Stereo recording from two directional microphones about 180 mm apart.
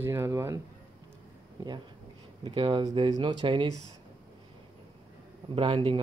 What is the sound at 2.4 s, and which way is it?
Speech, 25° right (ahead or behind).